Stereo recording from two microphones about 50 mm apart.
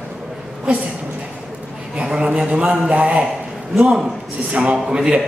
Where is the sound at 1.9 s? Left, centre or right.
Centre.